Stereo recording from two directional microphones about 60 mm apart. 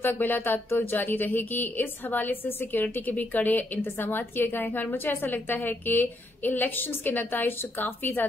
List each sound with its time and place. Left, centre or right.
0.0 s a woman's voice: left